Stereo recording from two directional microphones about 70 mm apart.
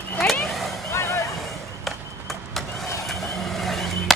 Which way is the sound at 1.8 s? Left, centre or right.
Centre.